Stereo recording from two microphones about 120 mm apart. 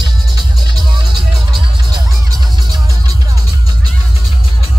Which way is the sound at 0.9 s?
40° right (ahead or behind).